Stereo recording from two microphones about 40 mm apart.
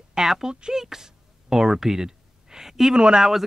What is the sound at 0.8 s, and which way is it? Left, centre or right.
Gasp, centre.